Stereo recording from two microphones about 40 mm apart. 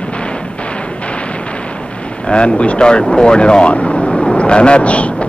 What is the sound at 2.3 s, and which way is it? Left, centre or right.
A man's voice, left.